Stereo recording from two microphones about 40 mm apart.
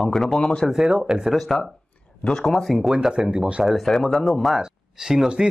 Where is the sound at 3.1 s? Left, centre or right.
Centre.